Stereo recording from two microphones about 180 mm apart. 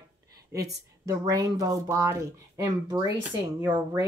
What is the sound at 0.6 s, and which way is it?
Speech, 65° right (ahead or behind).